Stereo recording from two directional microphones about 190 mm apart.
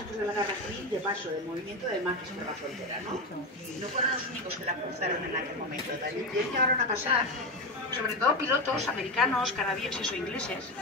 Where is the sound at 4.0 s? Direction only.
25° right (ahead or behind).